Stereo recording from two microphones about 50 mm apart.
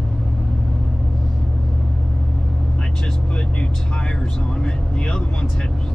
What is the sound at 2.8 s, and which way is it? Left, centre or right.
Speech, centre.